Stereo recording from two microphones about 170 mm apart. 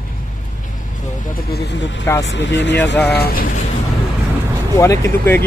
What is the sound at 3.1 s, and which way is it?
Speech, 65° left (ahead or behind).